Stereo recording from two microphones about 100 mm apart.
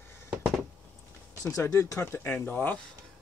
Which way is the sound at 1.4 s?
30° left (ahead or behind).